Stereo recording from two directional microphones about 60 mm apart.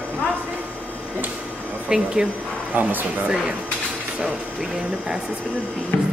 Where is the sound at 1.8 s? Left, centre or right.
Centre.